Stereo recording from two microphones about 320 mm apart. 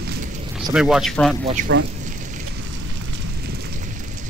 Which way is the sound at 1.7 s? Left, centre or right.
Right.